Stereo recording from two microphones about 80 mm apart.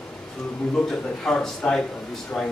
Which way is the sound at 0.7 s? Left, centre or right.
Centre.